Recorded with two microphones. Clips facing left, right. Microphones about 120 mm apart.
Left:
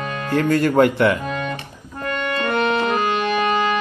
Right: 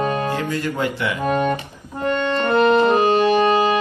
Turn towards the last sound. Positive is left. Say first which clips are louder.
# right 4 dB
turn(degrees=-35)  # may be behind; listen again after turning